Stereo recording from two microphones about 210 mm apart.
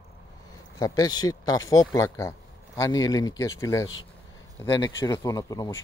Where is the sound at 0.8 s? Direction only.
20° left (ahead or behind).